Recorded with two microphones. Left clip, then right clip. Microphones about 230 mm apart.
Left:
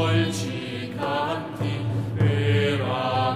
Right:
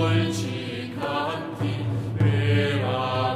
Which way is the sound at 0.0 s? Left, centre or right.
Left.